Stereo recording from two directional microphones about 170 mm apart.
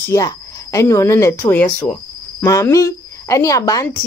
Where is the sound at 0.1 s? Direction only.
20° left (ahead or behind).